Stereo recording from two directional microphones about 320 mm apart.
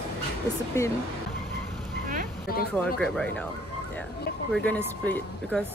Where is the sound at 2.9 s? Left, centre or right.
Centre.